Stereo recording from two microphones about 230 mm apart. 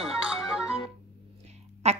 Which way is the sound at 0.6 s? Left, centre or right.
Centre.